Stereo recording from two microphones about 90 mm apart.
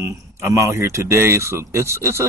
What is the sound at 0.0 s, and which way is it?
Speech, 35° right (ahead or behind).